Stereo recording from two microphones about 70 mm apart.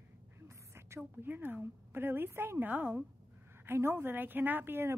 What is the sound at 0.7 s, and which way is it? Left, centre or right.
Speech, right.